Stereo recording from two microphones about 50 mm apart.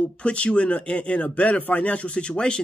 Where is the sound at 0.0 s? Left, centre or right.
Left.